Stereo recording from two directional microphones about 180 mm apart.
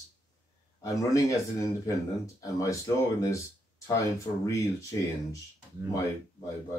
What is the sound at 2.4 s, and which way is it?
Speech, 15° left (ahead or behind).